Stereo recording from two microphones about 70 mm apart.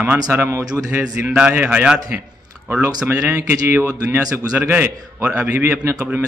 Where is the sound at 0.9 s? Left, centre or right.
Right.